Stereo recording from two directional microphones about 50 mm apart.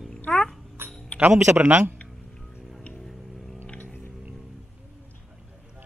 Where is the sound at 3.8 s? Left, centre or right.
Left.